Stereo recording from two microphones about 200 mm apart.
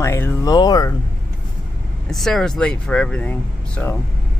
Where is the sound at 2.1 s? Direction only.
Centre (ahead or behind).